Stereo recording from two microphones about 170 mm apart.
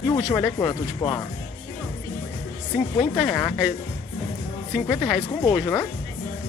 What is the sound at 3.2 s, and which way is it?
Speech, 15° left (ahead or behind).